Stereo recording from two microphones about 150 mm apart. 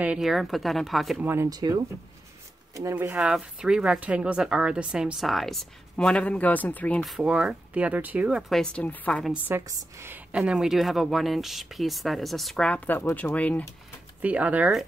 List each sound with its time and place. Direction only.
0.0 s speech: 5° right (ahead or behind)
1.2 s speech: 15° right (ahead or behind); by 9.2 s 10° left (ahead or behind)
9.5 s speech: 20° right (ahead or behind); by 13.7 s 10° left (ahead or behind)
14.2 s speech: 10° right (ahead or behind)